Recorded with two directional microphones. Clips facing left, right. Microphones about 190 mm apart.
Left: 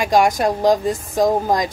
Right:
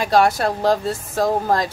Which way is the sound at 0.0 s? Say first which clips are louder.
Left 1 dB; 15° left (ahead or behind).